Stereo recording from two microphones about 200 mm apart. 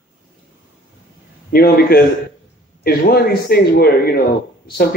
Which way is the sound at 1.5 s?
50° left (ahead or behind).